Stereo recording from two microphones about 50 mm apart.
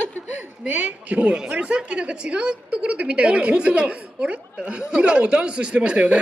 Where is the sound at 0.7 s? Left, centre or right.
Right.